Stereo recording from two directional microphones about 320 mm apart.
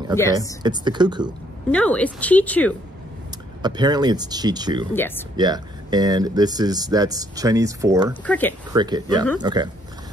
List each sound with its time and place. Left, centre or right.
0.2 s speech: centre
0.6 s speech: centre
1.7 s speech: centre
3.6 s speech: centre
4.9 s speech: centre
5.4 s speech: centre
8.3 s speech: centre
8.7 s speech: centre